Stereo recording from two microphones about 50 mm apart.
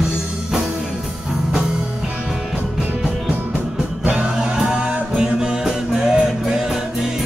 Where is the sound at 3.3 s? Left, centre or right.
Right.